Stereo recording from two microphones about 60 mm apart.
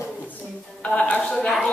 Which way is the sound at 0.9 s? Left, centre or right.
Centre.